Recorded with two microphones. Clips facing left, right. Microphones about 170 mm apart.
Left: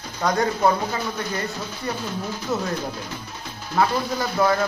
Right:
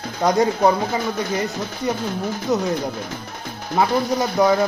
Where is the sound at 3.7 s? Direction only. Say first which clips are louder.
Right 3 dB; 15° right (ahead or behind).